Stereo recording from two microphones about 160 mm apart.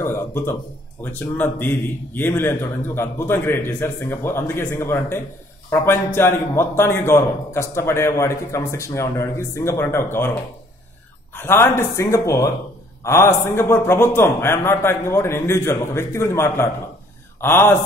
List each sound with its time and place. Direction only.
0.0 s a man's voice: 15° left (ahead or behind)
11.3 s a man's voice: 15° left (ahead or behind)